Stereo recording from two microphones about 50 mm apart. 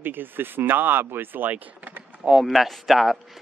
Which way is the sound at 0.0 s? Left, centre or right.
Right.